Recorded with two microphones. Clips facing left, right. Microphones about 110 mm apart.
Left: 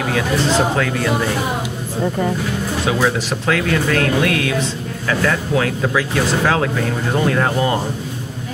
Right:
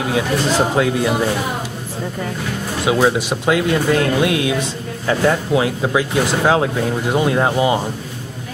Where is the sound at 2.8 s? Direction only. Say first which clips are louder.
Right 4 dB; 15° right (ahead or behind).